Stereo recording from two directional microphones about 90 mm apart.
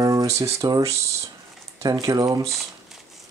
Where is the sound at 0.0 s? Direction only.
40° right (ahead or behind).